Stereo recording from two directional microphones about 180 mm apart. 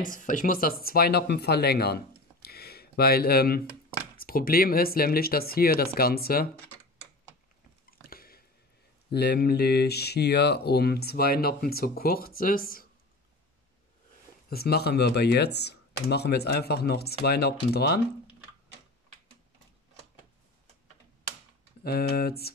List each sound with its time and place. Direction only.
0.0 s speech: 45° left (ahead or behind)
8.1 s squish: 55° left (ahead or behind)
9.1 s speech: 65° left (ahead or behind)
14.5 s speech: 60° left (ahead or behind)
21.8 s speech: 60° left (ahead or behind)